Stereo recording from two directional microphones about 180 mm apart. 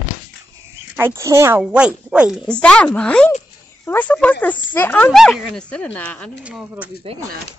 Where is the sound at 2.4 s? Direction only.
5° left (ahead or behind).